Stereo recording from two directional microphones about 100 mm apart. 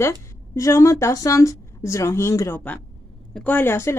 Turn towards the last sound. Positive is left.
turn(degrees=25)  # may be behind; listen again after turning